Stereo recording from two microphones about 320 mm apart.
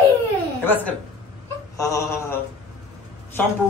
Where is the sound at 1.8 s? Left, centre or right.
Centre.